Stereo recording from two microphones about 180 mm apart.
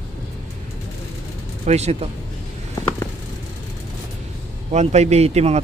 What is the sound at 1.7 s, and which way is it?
Speech, 35° right (ahead or behind).